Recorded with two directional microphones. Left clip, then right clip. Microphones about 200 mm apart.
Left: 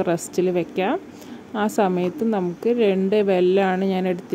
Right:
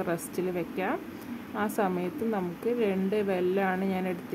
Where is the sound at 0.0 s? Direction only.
30° left (ahead or behind).